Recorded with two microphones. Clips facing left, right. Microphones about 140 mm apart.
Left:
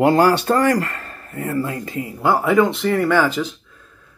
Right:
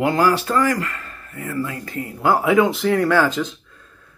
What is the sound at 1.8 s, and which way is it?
Speech, 15° left (ahead or behind).